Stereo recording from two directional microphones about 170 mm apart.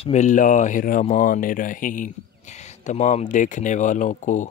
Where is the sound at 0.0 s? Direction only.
45° left (ahead or behind).